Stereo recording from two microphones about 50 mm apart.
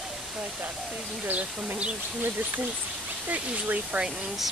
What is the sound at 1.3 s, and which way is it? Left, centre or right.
Speech, right.